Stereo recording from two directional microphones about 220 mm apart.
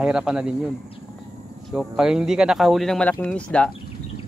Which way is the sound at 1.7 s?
5° right (ahead or behind).